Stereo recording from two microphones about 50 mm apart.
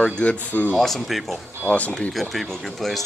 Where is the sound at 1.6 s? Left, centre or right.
Left.